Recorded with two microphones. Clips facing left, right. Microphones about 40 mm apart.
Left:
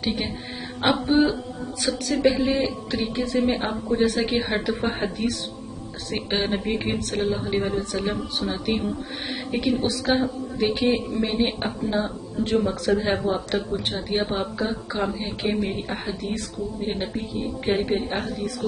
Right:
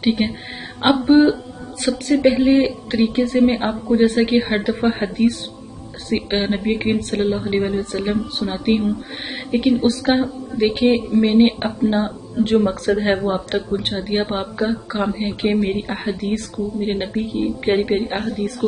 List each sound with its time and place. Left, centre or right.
0.0 s speech: right
1.0 s speech: right
1.8 s speech: right
2.9 s speech: right
3.3 s speech: right
4.8 s speech: centre
5.1 s speech: right
9.8 s speech: right
18.2 s speech: right